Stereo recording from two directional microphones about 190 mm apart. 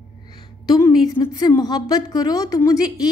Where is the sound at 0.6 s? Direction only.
20° left (ahead or behind).